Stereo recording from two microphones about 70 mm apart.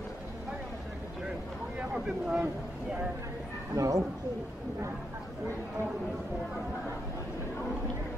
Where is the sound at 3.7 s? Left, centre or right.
Right.